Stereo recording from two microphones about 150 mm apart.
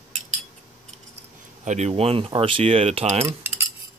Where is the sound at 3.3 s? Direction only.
15° right (ahead or behind).